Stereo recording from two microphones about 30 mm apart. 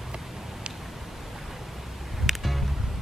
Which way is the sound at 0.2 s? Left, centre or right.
Centre.